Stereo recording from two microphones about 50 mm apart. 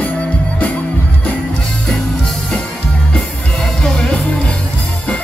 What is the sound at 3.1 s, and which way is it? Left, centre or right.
Music, centre.